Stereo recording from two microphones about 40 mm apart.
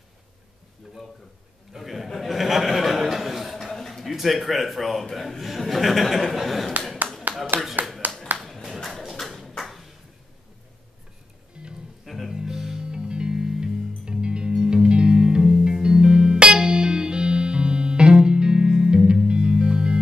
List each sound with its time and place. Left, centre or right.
1.7 s a man's voice: centre
2.0 s a sound: centre
5.4 s speech: centre
7.3 s a sound: right
7.8 s clapping: right
8.6 s a sound: centre
9.6 s ping: centre
11.6 s music: right
12.3 s music: centre
12.8 s music: right